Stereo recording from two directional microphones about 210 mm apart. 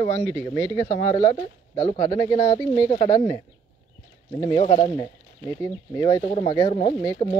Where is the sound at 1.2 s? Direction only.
25° left (ahead or behind).